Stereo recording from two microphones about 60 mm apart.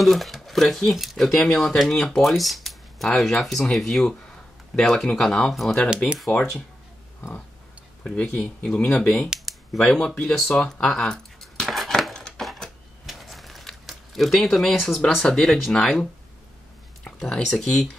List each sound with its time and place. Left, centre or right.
0.0 s speech: centre
6.3 s speech: left
8.0 s speech: centre
9.5 s a sound: centre
9.9 s speech: centre
11.7 s a sound: centre
15.2 s speech: centre
17.2 s speech: centre